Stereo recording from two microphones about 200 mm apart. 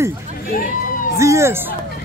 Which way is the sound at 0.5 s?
40° left (ahead or behind).